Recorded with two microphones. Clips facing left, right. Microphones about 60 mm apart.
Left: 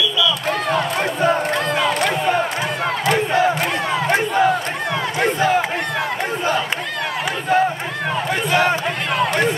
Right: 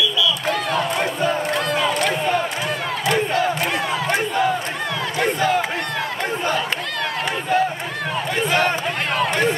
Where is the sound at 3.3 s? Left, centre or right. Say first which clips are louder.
Left 3 dB; centre.